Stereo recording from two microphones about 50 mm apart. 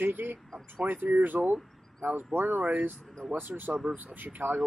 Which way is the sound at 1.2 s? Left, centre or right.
Right.